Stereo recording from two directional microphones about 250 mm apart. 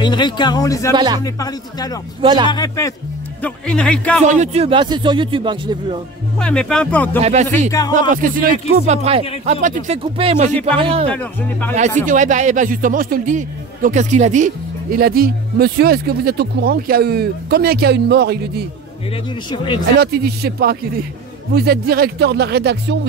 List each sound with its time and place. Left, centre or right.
0.0 s speech: centre
0.9 s speech: centre
1.2 s speech: centre
2.2 s speech: centre
2.5 s speech: centre
3.4 s speech: centre
4.2 s speech: right
6.4 s speech: centre
7.2 s speech: right
12.1 s a man's voice: right
19.5 s speech: centre
20.0 s a man's voice: right